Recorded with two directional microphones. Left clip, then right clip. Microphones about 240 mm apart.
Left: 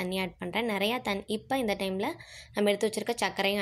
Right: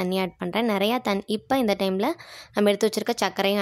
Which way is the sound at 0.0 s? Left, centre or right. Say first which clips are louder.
Right 6 dB; right.